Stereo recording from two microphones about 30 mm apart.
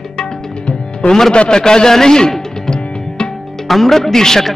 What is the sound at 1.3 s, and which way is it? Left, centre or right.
Speech, left.